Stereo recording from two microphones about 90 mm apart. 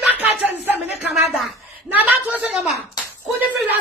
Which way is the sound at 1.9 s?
15° right (ahead or behind).